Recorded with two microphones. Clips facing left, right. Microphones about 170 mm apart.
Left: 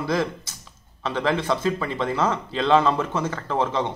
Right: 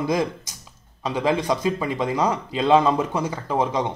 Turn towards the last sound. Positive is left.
turn(degrees=-15)  # may be behind; listen again after turning